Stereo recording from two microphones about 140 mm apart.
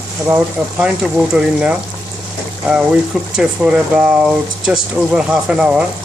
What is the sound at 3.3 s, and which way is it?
Speech, 5° right (ahead or behind).